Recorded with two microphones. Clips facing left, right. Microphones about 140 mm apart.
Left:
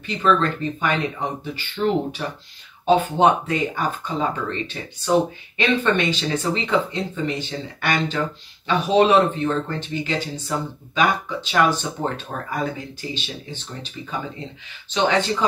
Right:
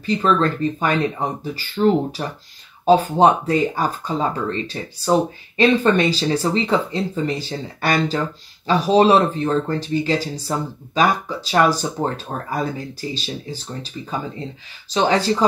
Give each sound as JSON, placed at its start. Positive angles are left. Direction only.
{"t": 0.0, "sound": "speech", "side_deg": -35}